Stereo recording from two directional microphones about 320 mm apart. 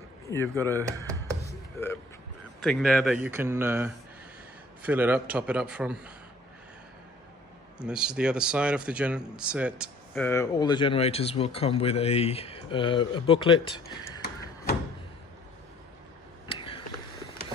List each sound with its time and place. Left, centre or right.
0.3 s speech: centre
2.6 s speech: centre
7.8 s speech: centre
16.4 s a sound: centre